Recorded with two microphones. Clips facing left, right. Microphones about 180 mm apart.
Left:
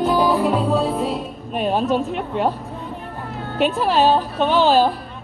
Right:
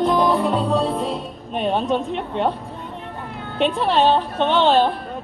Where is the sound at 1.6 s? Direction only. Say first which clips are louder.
Left 1 dB; 5° left (ahead or behind).